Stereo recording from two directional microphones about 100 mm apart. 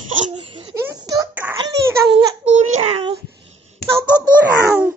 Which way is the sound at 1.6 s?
50° right (ahead or behind).